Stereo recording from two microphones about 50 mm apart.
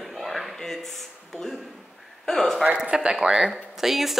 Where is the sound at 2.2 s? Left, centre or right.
Centre.